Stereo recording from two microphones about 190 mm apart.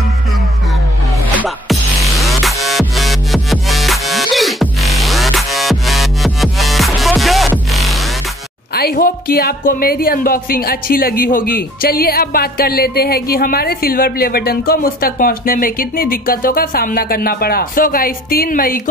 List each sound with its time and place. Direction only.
1.4 s music: centre (ahead or behind)
8.7 s speech: 50° left (ahead or behind)